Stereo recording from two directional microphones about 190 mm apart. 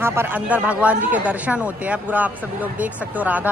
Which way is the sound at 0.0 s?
10° right (ahead or behind).